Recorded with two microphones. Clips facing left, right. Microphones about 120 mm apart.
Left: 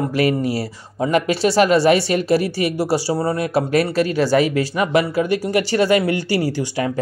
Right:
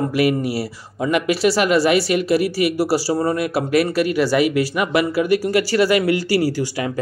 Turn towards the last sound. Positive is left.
turn(degrees=20)  # may be behind; listen again after turning